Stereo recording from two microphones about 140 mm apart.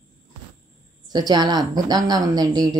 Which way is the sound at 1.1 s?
30° right (ahead or behind).